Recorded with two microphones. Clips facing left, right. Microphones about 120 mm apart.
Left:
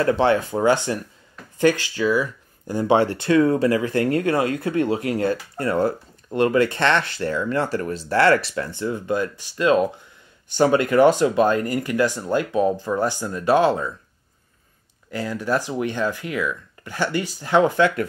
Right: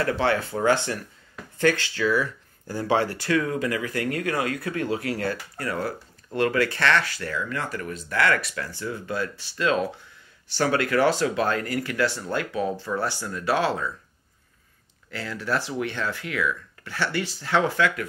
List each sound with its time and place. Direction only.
0.0 s speech: 20° left (ahead or behind)
15.0 s speech: 15° left (ahead or behind)